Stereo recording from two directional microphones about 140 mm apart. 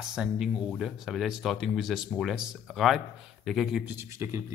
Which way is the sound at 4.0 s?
25° right (ahead or behind).